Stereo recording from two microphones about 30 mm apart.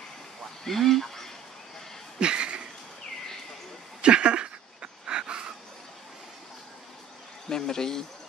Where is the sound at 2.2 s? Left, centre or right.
Right.